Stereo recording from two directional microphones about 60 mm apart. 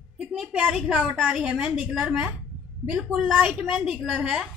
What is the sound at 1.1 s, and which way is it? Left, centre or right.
Speech, centre.